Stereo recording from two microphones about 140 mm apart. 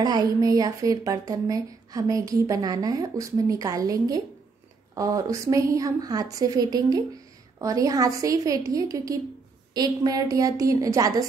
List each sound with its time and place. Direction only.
0.0 s a woman's voice: 30° right (ahead or behind)